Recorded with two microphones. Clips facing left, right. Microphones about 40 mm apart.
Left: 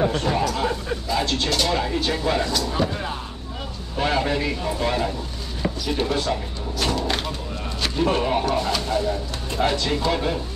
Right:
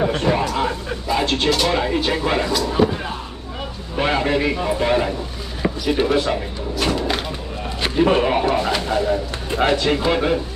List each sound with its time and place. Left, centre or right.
0.0 s speech: right
1.2 s speech: right
6.8 s a sound: centre
7.8 s speech: right